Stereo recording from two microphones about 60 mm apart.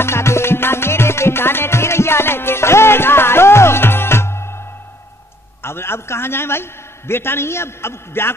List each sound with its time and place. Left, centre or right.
0.0 s music: left
5.6 s a man's voice: left